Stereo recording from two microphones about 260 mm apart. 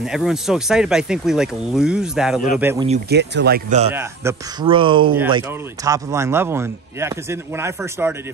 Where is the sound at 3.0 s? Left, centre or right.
Right.